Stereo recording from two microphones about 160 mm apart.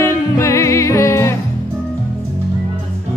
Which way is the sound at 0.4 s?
20° left (ahead or behind).